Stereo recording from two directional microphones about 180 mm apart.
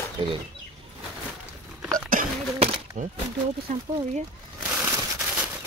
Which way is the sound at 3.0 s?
45° right (ahead or behind).